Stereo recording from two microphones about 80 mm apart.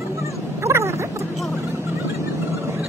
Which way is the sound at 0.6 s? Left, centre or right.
Right.